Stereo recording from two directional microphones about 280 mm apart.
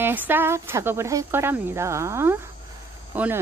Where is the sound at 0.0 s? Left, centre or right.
Centre.